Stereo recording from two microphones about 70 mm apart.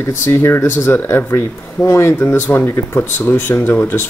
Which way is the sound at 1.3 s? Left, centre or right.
Left.